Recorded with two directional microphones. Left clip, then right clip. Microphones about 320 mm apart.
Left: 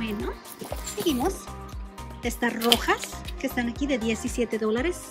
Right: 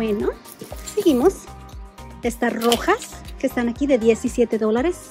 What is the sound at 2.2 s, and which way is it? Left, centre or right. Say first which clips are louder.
Speech: right 5 dB; centre.